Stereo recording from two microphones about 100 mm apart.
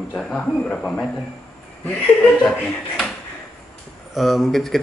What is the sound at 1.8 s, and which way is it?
A man's voice, 15° left (ahead or behind).